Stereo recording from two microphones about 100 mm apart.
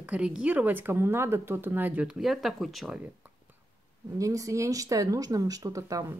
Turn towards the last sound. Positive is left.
turn(degrees=-35)  # may be behind; listen again after turning